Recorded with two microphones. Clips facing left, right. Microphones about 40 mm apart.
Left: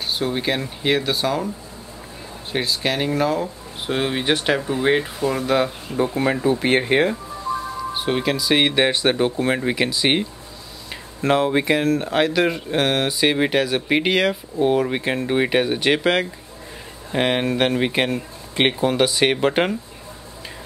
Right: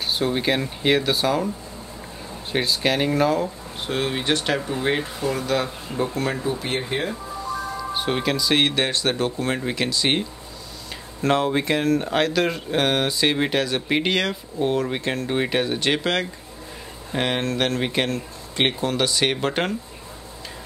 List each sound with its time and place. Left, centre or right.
0.0 s speech: centre
2.5 s speech: centre
6.6 s speech: left
7.9 s speech: centre